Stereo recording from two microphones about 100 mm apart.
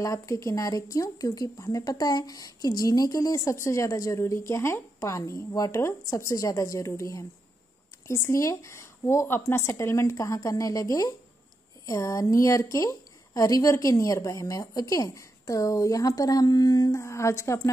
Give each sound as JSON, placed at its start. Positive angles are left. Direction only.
{"t": 0.0, "sound": "a woman's voice", "side_deg": 30}